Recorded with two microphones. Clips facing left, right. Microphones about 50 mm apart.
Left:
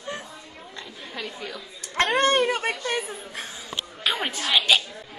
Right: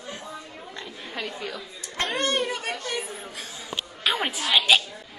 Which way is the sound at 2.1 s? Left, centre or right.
Left.